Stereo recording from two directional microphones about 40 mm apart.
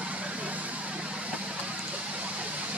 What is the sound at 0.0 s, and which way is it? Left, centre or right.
Vehicle, right.